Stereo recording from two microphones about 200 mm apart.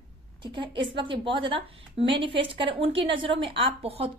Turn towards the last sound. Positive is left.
turn(degrees=-30)  # may be behind; listen again after turning